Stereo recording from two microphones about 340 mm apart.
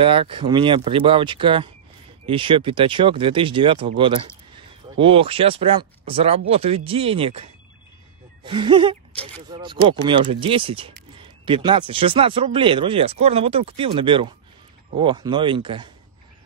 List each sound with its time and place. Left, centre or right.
0.0 s speech: centre
8.5 s speech: centre